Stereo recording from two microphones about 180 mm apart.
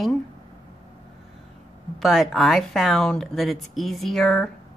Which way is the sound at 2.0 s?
Centre (ahead or behind).